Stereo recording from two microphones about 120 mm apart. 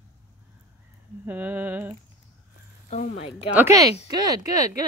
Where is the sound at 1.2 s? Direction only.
15° right (ahead or behind).